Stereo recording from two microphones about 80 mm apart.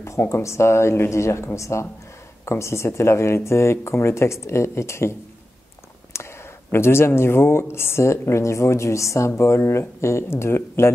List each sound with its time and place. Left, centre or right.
0.0 s speech: left
6.1 s speech: left